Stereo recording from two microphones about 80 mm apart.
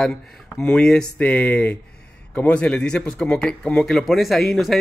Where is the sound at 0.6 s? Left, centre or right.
Centre.